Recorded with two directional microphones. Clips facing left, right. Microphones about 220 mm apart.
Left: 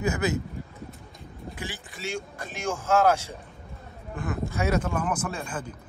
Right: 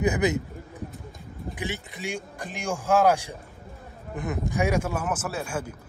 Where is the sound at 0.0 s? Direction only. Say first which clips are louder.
Right 3 dB; 20° right (ahead or behind).